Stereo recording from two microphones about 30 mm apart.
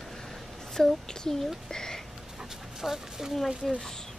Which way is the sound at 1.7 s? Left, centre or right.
Left.